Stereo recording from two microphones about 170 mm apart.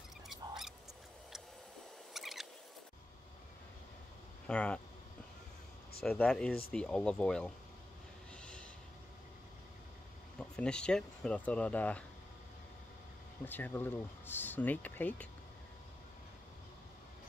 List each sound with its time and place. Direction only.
0.3 s a sound: centre (ahead or behind)
2.1 s rodents: centre (ahead or behind)
4.5 s speech: 5° left (ahead or behind)
6.0 s speech: 5° left (ahead or behind)
8.4 s a sound: 5° left (ahead or behind)
10.4 s speech: 5° left (ahead or behind)
13.5 s speech: 10° left (ahead or behind)